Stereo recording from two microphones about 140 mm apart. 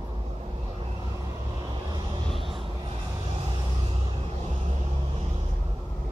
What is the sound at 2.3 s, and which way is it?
Vehicle, centre (ahead or behind).